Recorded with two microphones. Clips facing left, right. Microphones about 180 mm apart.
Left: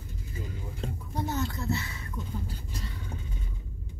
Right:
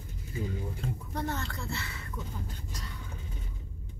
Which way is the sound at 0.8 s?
30° left (ahead or behind).